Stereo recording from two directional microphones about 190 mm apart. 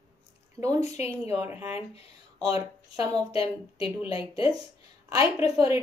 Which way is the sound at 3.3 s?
30° left (ahead or behind).